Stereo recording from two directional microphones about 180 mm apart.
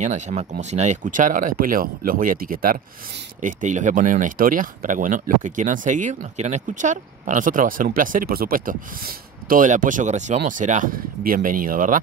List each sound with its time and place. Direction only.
0.0 s speech: 40° right (ahead or behind)